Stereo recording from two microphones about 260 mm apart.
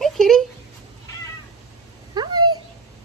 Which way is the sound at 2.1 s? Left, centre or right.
Centre.